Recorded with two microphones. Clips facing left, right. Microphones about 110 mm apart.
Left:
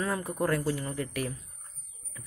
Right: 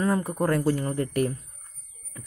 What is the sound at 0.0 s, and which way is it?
A man's voice, 30° right (ahead or behind).